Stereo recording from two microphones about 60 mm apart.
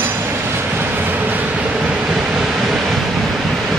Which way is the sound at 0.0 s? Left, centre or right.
Right.